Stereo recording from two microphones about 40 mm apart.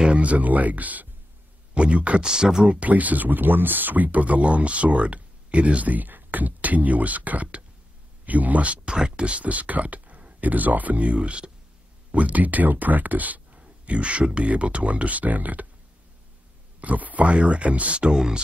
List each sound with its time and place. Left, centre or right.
0.1 s speech: right
2.2 s speech: centre
2.6 s speech: right
2.9 s speech: right
8.8 s speech: centre
9.2 s speech: right
13.8 s speech: right
16.8 s speech: right